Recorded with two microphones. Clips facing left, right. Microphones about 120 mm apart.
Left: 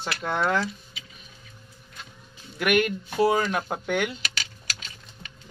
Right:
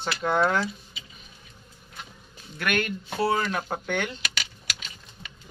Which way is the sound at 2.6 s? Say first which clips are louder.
Left 5 dB; 15° left (ahead or behind).